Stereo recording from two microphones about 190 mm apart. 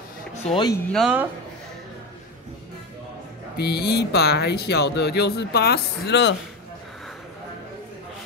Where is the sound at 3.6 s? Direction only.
60° left (ahead or behind).